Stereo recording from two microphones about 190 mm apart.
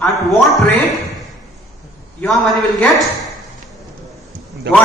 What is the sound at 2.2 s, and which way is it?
Speech, centre (ahead or behind).